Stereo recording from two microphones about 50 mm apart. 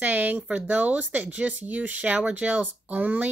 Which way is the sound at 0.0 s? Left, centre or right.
Right.